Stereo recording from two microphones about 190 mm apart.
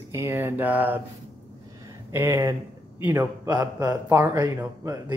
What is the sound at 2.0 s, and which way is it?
Speech, 15° right (ahead or behind).